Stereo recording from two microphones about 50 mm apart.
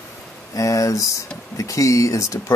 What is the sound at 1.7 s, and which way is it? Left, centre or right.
Speech, left.